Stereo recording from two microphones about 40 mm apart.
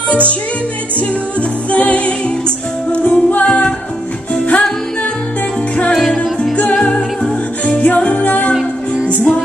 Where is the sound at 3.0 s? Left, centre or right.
Left.